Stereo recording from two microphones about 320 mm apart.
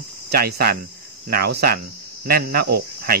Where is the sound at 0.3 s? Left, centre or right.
Right.